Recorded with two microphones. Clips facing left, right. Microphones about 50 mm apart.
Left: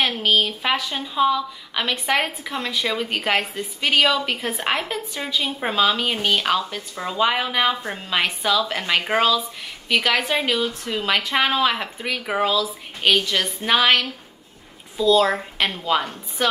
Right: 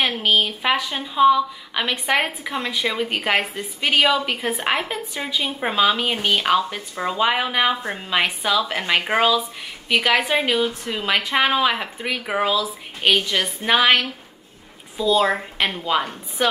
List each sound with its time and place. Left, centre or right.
0.0 s a woman's voice: centre
8.1 s a woman's voice: centre